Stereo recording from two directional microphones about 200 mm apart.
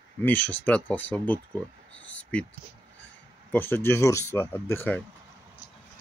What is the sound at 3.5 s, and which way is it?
Speech, 10° left (ahead or behind).